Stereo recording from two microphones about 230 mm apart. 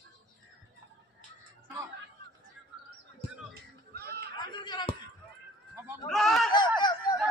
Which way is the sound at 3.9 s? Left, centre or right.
Right.